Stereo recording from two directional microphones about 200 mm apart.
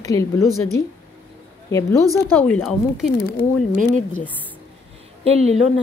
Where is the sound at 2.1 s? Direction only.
10° left (ahead or behind).